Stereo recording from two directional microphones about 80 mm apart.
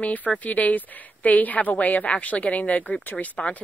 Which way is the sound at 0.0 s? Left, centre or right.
Left.